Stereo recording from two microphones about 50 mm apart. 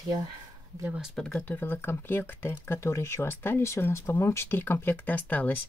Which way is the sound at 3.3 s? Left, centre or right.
Left.